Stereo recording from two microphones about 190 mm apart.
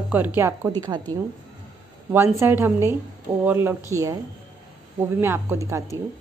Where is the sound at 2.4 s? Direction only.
10° right (ahead or behind).